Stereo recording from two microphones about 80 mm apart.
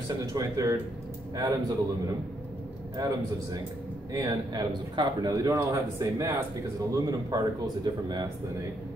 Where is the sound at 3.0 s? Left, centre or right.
Right.